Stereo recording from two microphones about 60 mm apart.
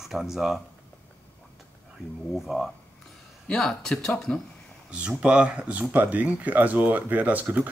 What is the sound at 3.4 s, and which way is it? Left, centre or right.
Speech, centre.